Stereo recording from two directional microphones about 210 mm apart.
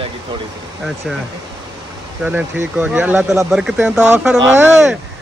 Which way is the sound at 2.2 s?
5° right (ahead or behind).